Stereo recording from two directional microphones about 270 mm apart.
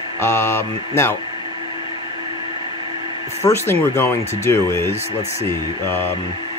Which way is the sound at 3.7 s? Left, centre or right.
Centre.